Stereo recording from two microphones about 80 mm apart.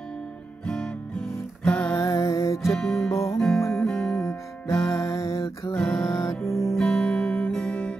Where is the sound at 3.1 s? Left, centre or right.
Left.